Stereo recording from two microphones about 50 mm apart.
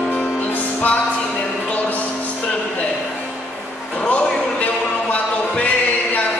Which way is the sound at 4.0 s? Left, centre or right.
Left.